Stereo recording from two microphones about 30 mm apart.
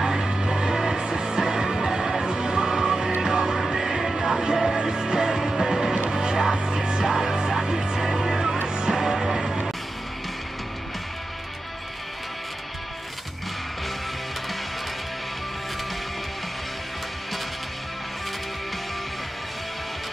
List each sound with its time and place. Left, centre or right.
0.0 s music: centre
8.0 s music: centre
8.6 s music: right
8.9 s music: centre